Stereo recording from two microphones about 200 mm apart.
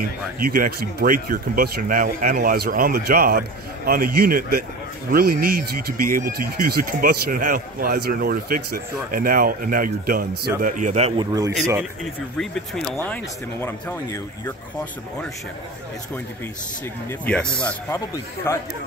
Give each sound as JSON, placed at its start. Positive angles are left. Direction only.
{"t": 0.4, "sound": "a man's voice", "side_deg": -50}
{"t": 12.4, "sound": "speech", "side_deg": 0}
{"t": 17.3, "sound": "speech", "side_deg": 5}